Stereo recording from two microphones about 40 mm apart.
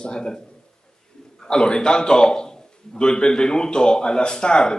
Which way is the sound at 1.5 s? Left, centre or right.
Left.